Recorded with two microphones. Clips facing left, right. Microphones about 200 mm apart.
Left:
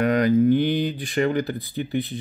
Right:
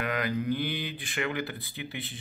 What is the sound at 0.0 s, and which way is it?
Speech, 40° left (ahead or behind).